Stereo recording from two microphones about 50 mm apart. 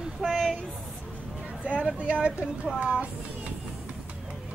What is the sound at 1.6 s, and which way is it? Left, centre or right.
Speech, right.